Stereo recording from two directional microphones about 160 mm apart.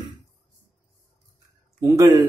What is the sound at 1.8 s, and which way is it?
Speech, 20° right (ahead or behind).